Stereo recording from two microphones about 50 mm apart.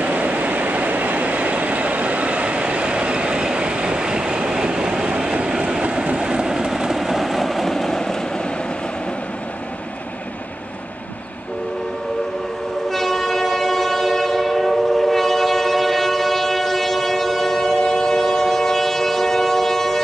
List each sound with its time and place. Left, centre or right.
0.0 s train: right; by 8.2 s centre
12.9 s train: centre